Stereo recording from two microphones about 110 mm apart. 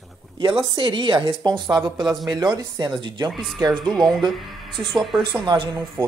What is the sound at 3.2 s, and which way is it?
Speech, centre (ahead or behind).